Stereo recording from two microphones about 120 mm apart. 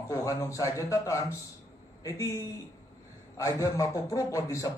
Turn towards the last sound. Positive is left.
turn(degrees=25)  # may be behind; listen again after turning